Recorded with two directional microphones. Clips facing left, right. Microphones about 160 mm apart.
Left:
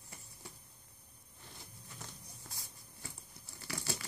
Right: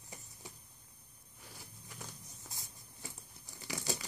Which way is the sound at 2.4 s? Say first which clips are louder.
Even; 20° right (ahead or behind).